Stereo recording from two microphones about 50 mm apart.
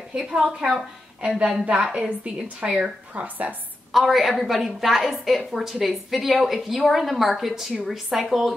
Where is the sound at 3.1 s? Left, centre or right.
Right.